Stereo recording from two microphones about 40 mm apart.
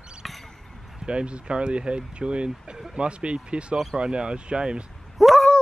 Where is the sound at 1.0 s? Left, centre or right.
Right.